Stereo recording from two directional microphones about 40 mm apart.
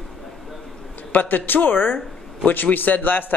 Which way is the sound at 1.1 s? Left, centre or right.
Left.